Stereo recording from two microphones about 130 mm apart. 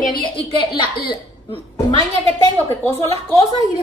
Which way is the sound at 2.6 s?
20° left (ahead or behind).